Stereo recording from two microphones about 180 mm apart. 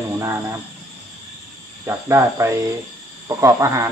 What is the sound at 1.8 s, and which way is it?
Speech, 15° right (ahead or behind).